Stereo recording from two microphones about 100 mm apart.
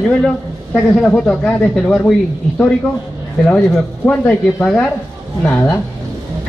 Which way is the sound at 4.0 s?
15° left (ahead or behind).